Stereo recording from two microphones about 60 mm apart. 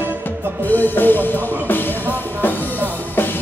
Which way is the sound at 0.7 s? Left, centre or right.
Left.